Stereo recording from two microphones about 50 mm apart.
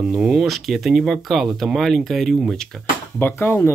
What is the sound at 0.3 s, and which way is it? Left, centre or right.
Speech, centre.